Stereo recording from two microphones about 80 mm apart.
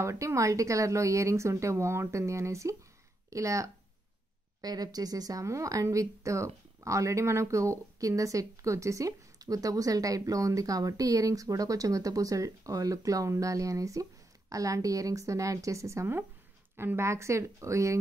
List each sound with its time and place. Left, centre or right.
0.0 s a woman's voice: right
4.6 s a woman's voice: right